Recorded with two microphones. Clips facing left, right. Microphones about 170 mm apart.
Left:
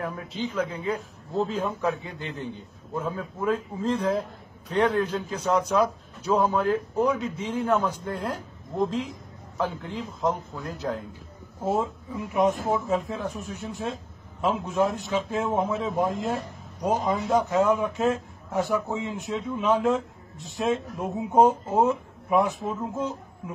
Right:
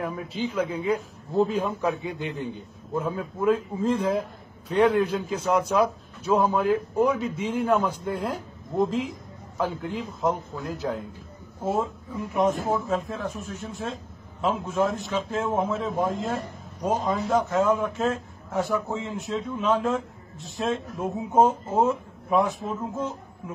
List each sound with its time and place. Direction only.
0.0 s a man's voice: 5° right (ahead or behind)
1.7 s a man's voice: centre (ahead or behind)
2.1 s a man's voice: 15° right (ahead or behind)
18.5 s a man's voice: 15° left (ahead or behind)
18.8 s a man's voice: centre (ahead or behind)